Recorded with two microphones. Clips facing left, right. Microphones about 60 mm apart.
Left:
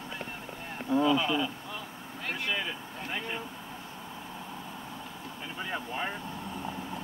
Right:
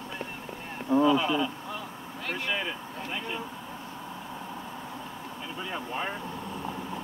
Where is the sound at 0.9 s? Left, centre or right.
Right.